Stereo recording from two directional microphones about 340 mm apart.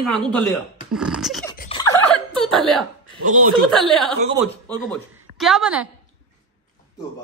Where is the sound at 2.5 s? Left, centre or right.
Centre.